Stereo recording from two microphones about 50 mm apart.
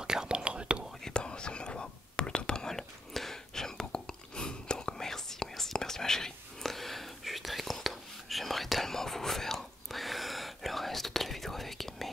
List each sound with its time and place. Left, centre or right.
0.0 s whispering: centre
1.0 s whispering: centre